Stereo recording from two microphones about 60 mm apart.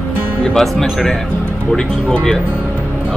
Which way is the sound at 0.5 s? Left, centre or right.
Centre.